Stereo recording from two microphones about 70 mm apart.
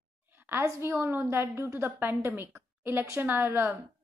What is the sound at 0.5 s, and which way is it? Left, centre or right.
A woman's voice, right.